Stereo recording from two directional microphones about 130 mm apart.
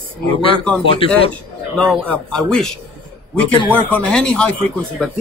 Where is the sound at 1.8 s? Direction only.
5° left (ahead or behind).